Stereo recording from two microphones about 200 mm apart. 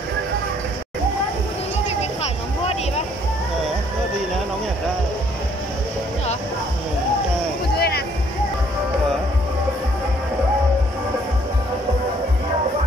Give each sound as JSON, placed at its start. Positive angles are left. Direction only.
{"t": 7.7, "sound": "music", "side_deg": 55}